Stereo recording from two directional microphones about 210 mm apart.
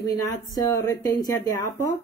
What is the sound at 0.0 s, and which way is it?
Speech, 15° left (ahead or behind).